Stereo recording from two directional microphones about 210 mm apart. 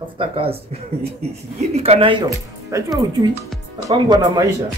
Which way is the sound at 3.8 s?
20° right (ahead or behind).